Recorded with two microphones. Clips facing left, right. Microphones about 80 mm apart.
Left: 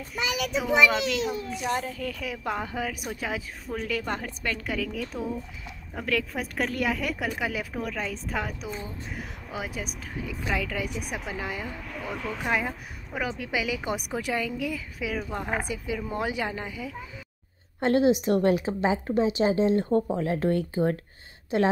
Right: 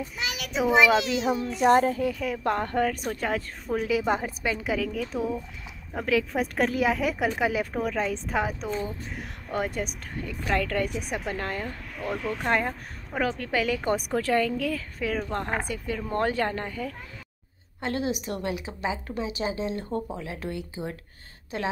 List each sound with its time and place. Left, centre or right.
0.0 s a woman's voice: centre
1.7 s a child's voice: right
2.1 s a woman's voice: centre
17.7 s a woman's voice: left